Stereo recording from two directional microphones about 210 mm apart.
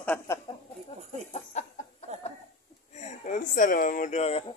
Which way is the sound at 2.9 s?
35° left (ahead or behind).